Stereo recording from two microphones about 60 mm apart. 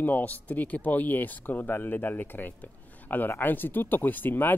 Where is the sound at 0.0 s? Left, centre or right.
Left.